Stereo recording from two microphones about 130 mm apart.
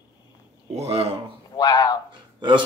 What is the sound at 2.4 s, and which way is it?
Speech, 35° right (ahead or behind).